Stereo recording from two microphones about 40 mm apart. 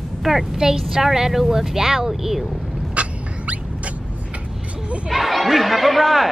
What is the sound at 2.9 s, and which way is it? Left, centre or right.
Rodents, right.